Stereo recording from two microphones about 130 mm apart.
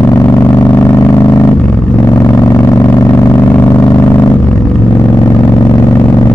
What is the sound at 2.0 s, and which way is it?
Vehicle, 25° left (ahead or behind).